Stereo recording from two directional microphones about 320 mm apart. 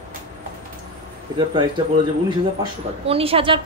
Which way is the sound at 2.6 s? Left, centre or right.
Centre.